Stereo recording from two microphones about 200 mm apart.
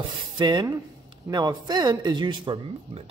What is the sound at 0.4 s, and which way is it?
Speech, 20° right (ahead or behind).